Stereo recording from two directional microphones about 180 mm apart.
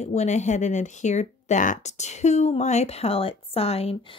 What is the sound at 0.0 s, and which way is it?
Speech, 40° left (ahead or behind).